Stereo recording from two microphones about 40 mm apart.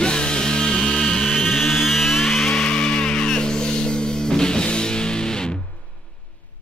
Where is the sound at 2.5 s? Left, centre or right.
Left.